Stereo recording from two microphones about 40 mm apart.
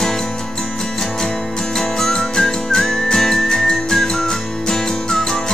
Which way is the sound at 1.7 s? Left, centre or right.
Centre.